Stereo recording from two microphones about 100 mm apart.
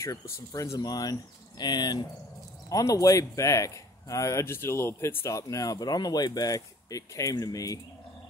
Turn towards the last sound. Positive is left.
turn(degrees=35)  # may be behind; listen again after turning